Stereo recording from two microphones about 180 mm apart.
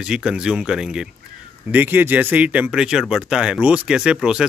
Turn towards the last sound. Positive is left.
turn(degrees=-5)  # may be behind; listen again after turning